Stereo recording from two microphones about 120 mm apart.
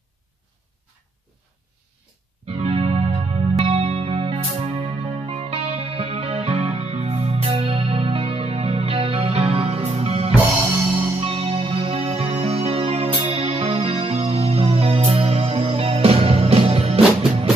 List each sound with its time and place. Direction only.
2.4 s music: 55° right (ahead or behind)